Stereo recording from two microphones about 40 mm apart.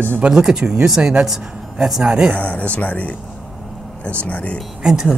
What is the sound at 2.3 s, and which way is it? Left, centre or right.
Speech, left.